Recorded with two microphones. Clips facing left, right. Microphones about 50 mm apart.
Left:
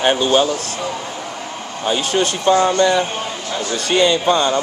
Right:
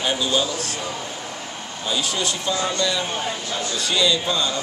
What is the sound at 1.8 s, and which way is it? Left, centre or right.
A man's voice, left.